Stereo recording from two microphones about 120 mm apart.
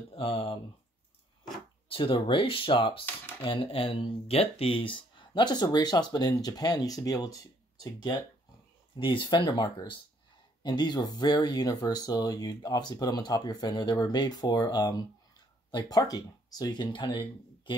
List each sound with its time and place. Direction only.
0.1 s speech: 50° left (ahead or behind)
1.9 s speech: 45° left (ahead or behind)